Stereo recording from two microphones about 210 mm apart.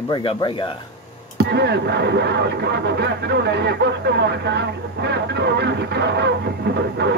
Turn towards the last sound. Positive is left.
turn(degrees=-55)  # may be behind; listen again after turning